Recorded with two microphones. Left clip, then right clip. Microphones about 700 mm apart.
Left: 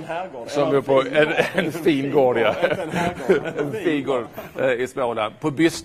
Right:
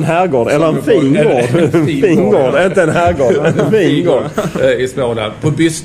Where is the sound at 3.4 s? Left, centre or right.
Right.